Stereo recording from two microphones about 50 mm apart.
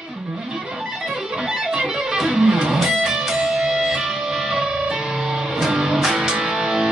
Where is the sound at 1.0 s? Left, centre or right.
Centre.